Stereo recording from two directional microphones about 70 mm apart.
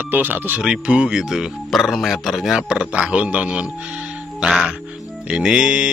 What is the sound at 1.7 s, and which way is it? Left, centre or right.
Speech, centre.